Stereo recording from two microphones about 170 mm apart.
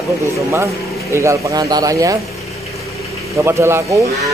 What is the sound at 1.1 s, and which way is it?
Speech, 15° right (ahead or behind).